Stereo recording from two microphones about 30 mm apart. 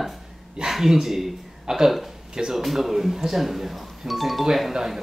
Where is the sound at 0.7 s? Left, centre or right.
Centre.